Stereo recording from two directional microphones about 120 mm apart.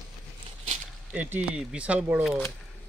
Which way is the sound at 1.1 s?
15° right (ahead or behind).